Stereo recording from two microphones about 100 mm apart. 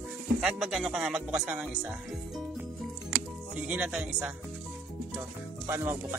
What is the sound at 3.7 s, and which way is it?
Speech, 15° right (ahead or behind).